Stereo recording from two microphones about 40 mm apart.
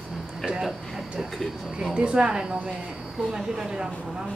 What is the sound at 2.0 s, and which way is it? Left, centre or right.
A woman's voice, right.